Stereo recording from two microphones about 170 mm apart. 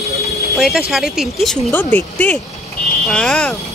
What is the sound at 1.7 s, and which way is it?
Speech, 10° left (ahead or behind).